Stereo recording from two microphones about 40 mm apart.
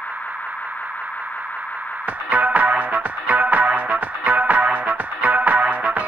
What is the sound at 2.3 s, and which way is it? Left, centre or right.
Music, right.